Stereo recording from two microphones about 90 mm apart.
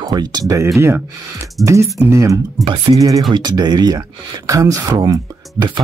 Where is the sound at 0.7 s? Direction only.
30° right (ahead or behind).